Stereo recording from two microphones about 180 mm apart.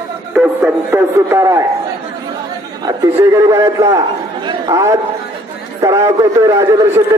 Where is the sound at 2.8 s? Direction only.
20° right (ahead or behind).